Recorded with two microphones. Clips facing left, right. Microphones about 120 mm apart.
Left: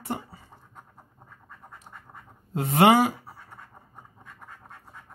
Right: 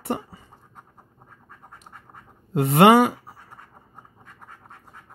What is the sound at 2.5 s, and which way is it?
Speech, 65° right (ahead or behind).